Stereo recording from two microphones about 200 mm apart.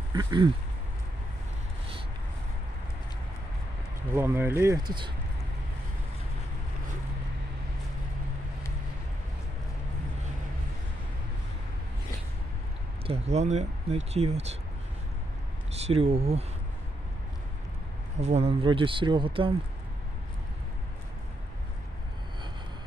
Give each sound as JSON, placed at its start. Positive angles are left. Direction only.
{"t": 0.1, "sound": "speech", "side_deg": -20}
{"t": 4.1, "sound": "speech", "side_deg": -10}
{"t": 13.0, "sound": "speech", "side_deg": -30}
{"t": 15.7, "sound": "speech", "side_deg": -30}
{"t": 18.2, "sound": "speech", "side_deg": -30}